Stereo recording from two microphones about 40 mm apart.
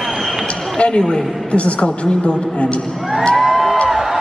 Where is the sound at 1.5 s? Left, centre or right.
Left.